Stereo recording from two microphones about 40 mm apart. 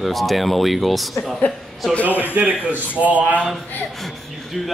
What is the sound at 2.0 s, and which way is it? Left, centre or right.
Speech, left.